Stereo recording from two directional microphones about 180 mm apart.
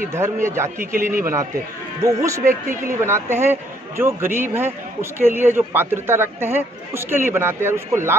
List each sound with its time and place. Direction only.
0.1 s a woman's voice: 15° right (ahead or behind)